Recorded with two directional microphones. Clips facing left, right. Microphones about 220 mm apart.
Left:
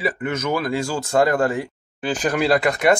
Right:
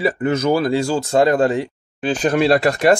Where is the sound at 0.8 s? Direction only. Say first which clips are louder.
Right 3 dB; 20° right (ahead or behind).